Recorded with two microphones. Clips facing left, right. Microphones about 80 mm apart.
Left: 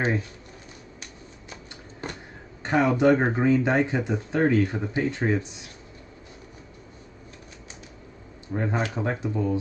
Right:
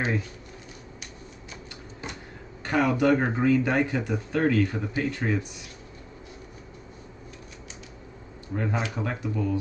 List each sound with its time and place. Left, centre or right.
2.6 s speech: left
8.5 s speech: left